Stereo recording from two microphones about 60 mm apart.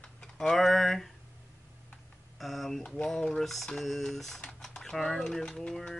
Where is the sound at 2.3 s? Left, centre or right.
Centre.